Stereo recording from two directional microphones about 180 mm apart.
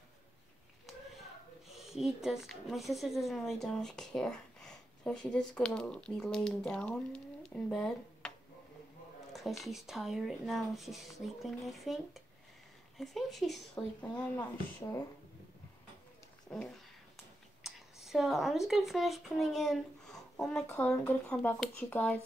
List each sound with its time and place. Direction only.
1.7 s speech: centre (ahead or behind)
9.3 s speech: centre (ahead or behind)
14.1 s speech: 20° left (ahead or behind)
16.4 s speech: 5° left (ahead or behind)
17.6 s a sound: centre (ahead or behind)
18.7 s speech: centre (ahead or behind)